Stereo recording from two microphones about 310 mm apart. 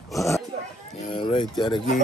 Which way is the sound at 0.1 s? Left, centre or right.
Centre.